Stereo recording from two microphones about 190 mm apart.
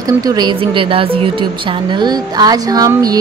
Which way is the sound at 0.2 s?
20° right (ahead or behind).